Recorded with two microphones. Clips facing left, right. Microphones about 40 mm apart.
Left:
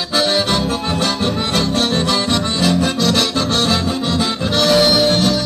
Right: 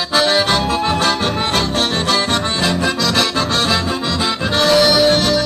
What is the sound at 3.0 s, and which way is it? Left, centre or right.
Music, right.